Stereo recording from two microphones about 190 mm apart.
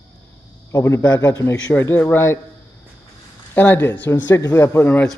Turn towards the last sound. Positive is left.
turn(degrees=10)  # may be behind; listen again after turning